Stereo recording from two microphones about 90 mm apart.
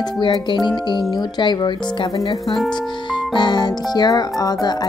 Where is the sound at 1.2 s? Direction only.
50° left (ahead or behind).